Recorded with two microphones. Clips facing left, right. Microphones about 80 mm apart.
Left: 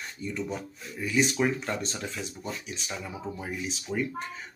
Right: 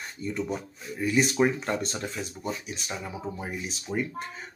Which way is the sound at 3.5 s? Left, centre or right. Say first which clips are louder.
Left 1 dB; centre.